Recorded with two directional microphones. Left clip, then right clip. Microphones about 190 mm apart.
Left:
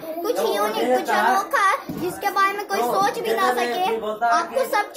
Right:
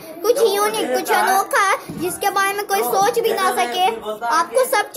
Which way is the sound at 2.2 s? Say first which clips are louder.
Right 2 dB; 50° right (ahead or behind).